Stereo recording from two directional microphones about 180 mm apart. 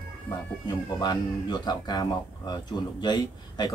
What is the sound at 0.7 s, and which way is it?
Speech, 20° left (ahead or behind).